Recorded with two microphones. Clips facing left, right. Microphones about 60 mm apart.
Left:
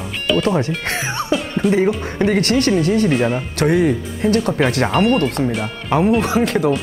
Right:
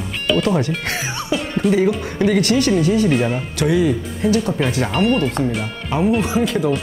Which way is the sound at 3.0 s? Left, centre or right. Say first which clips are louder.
Left 1 dB; centre.